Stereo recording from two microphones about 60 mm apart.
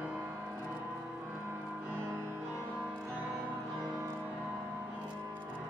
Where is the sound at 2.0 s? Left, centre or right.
Right.